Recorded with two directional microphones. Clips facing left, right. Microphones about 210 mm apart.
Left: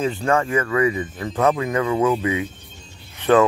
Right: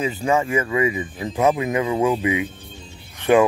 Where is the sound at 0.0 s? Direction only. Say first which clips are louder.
Even; 5° right (ahead or behind).